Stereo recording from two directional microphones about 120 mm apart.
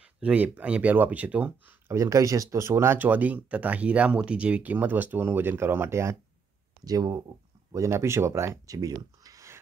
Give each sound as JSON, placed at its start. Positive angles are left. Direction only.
{"t": 0.0, "sound": "speech", "side_deg": -10}
{"t": 1.9, "sound": "speech", "side_deg": -25}
{"t": 6.8, "sound": "speech", "side_deg": -35}